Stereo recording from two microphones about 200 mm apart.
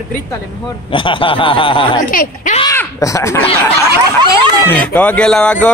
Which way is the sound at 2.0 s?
40° left (ahead or behind).